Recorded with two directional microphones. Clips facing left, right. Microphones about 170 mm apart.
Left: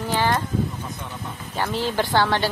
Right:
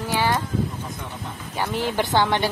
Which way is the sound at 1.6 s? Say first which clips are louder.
Even; 15° right (ahead or behind).